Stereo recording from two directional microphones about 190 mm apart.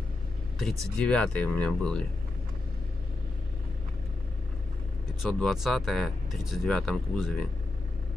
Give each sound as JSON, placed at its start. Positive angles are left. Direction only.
{"t": 0.6, "sound": "speech", "side_deg": 5}
{"t": 5.2, "sound": "speech", "side_deg": 0}